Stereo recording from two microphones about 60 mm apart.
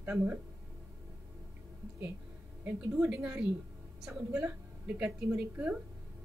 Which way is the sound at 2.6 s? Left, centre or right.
Right.